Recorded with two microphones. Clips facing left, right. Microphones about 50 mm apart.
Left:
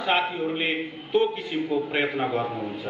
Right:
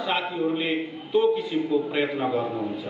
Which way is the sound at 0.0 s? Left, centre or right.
Left.